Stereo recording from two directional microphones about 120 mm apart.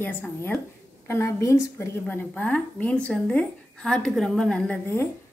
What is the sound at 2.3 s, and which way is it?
A woman's voice, 10° left (ahead or behind).